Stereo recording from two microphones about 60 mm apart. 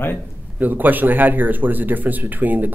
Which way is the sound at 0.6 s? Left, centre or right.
Right.